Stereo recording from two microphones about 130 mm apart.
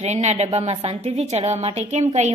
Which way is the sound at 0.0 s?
55° right (ahead or behind).